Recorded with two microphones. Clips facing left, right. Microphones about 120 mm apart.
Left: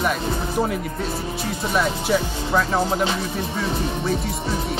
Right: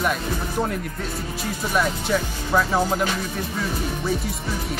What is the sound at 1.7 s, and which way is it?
Speech, centre (ahead or behind).